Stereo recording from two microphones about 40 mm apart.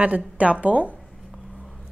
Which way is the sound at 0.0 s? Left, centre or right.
Right.